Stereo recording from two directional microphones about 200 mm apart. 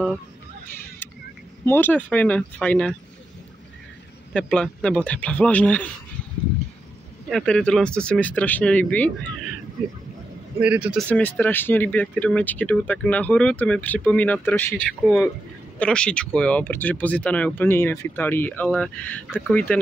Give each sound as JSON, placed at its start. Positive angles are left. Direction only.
{"t": 1.7, "sound": "speech", "side_deg": 10}
{"t": 4.3, "sound": "speech", "side_deg": 5}
{"t": 7.2, "sound": "speech", "side_deg": 5}
{"t": 10.6, "sound": "speech", "side_deg": -5}
{"t": 11.1, "sound": "speech", "side_deg": 10}
{"t": 15.0, "sound": "speech", "side_deg": 0}